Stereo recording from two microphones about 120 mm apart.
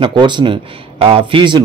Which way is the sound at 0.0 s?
40° right (ahead or behind).